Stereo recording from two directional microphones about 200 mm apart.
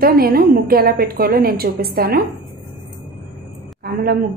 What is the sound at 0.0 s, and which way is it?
A woman's voice, 50° right (ahead or behind).